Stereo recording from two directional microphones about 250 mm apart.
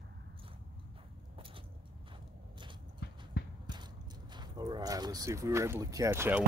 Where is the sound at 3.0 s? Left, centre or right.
Left.